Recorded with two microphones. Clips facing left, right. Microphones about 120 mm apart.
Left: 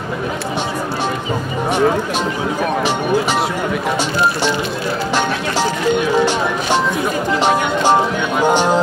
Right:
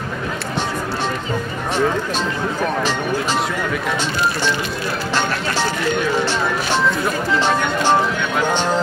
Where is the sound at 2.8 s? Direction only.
15° left (ahead or behind).